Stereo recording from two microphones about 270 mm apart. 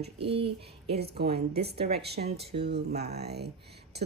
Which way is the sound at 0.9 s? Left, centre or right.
Right.